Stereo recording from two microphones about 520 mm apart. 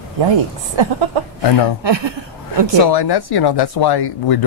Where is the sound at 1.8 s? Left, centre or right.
Right.